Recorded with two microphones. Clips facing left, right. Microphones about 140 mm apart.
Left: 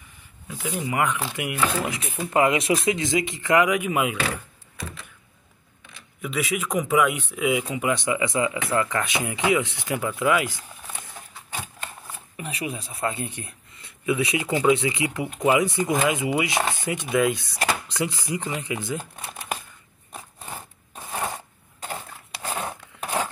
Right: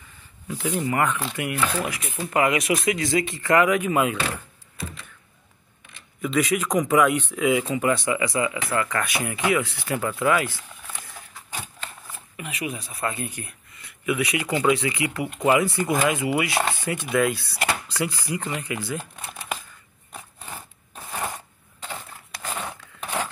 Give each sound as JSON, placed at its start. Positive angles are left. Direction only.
{"t": 0.6, "sound": "speech", "side_deg": 5}
{"t": 1.9, "sound": "speech", "side_deg": 25}
{"t": 6.2, "sound": "speech", "side_deg": 5}
{"t": 12.4, "sound": "speech", "side_deg": 35}
{"t": 20.1, "sound": "a sound", "side_deg": 15}